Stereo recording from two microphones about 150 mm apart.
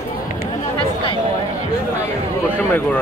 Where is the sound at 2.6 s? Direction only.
10° left (ahead or behind).